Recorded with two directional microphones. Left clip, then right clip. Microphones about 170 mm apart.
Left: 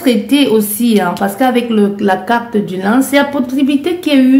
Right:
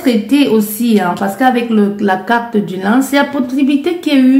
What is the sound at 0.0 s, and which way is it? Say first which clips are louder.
A woman's voice: left 1 dB; 30° left (ahead or behind).